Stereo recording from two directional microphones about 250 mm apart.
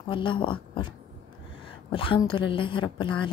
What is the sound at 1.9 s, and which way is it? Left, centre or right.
A woman's voice, left.